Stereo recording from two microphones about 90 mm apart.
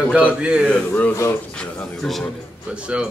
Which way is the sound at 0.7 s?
20° left (ahead or behind).